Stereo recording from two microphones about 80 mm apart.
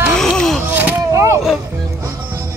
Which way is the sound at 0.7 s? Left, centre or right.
Right.